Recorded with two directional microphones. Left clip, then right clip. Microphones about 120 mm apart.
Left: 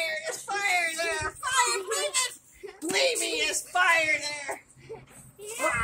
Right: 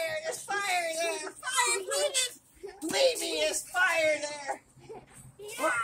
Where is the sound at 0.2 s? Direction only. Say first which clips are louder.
Left 3 dB; 20° right (ahead or behind).